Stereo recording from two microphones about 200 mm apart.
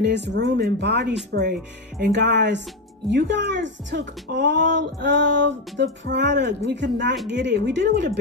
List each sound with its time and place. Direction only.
0.0 s speech: 60° right (ahead or behind)